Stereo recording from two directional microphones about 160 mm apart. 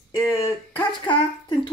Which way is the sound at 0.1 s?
25° left (ahead or behind).